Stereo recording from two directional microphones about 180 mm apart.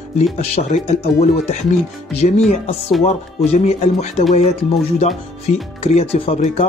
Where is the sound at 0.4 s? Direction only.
35° left (ahead or behind).